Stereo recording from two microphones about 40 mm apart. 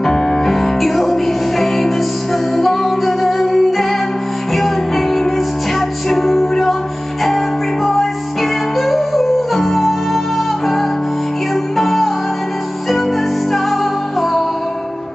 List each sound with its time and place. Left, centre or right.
0.0 s music: centre